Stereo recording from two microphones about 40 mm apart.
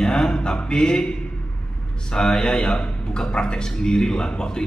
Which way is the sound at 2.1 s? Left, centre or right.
Centre.